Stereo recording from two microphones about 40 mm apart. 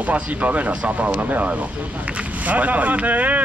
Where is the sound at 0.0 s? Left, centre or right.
Right.